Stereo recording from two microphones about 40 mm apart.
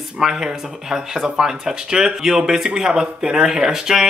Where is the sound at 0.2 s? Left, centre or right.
Centre.